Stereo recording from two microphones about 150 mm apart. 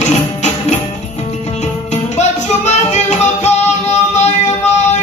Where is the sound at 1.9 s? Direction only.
50° left (ahead or behind).